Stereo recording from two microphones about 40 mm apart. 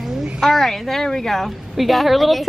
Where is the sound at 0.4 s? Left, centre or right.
Centre.